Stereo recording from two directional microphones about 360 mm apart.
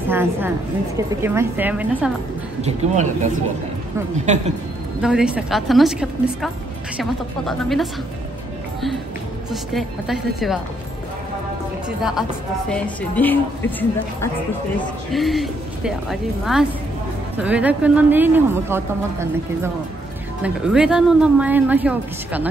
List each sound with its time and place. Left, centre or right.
0.1 s a woman's voice: centre
2.6 s speech: centre
5.0 s speech: centre
9.5 s speech: centre
12.0 s speech: centre